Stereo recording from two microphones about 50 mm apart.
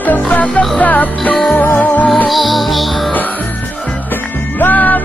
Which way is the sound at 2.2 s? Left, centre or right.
Centre.